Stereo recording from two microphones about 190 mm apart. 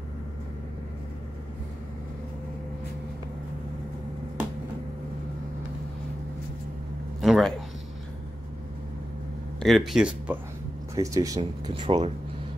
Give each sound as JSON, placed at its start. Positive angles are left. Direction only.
{"t": 7.2, "sound": "a sound", "side_deg": 0}
{"t": 9.6, "sound": "speech", "side_deg": 0}
{"t": 11.0, "sound": "speech", "side_deg": -15}